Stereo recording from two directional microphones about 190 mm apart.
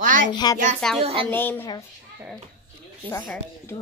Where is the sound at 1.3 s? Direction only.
10° left (ahead or behind).